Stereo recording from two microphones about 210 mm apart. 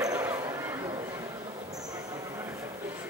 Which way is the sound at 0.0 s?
15° right (ahead or behind).